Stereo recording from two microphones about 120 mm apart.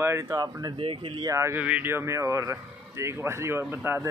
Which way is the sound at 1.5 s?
15° right (ahead or behind).